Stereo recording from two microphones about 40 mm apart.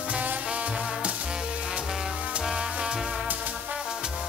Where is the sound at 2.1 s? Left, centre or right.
Right.